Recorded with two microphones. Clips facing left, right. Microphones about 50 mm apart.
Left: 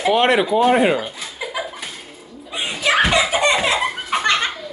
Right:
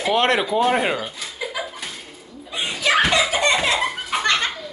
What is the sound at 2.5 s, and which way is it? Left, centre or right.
Belly laugh, centre.